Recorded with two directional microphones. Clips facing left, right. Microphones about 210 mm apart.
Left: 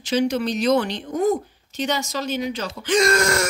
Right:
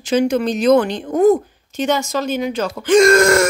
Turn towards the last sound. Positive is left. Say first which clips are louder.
# right 8 dB
turn(degrees=-50)  # may be behind; listen again after turning